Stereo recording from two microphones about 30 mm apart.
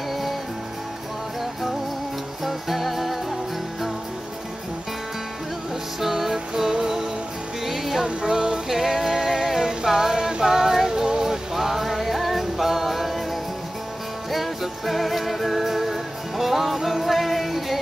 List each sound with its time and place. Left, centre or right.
2.4 s music: centre
5.9 s music: centre
7.6 s music: centre
8.0 s music: centre
8.6 s music: centre
9.6 s music: centre
11.5 s music: centre
14.3 s music: centre